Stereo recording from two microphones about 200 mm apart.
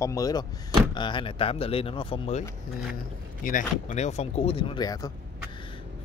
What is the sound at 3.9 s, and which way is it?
Speech, 35° left (ahead or behind).